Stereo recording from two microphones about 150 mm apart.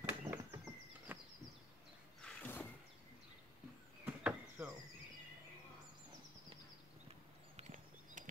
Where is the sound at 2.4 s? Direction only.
10° left (ahead or behind).